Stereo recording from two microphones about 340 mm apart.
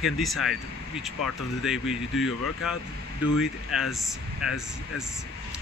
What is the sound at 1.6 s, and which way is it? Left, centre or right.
Speech, centre.